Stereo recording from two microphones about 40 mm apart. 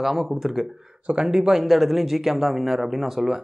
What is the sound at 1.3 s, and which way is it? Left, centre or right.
Speech, centre.